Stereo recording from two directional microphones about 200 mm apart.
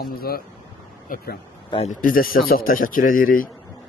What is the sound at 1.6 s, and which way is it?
Speech, 30° left (ahead or behind).